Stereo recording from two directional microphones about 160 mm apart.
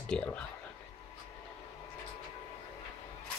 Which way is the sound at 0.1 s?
5° left (ahead or behind).